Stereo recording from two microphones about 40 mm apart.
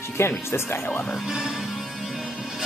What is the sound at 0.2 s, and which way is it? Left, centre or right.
Speech, left.